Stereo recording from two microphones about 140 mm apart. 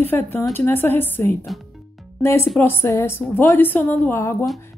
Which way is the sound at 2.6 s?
15° left (ahead or behind).